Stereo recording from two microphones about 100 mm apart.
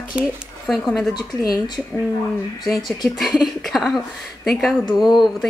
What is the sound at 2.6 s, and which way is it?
Speech, 35° left (ahead or behind).